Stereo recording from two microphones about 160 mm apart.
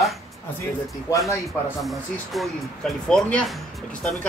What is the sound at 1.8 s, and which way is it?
Speech, centre (ahead or behind).